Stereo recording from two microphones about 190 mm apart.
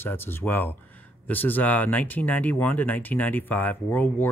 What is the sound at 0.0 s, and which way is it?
Speech, 10° left (ahead or behind).